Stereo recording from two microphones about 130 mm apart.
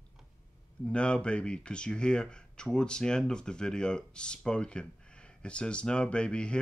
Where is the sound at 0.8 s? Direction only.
10° left (ahead or behind).